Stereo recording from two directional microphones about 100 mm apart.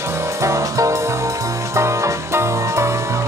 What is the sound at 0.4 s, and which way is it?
Music, 30° right (ahead or behind).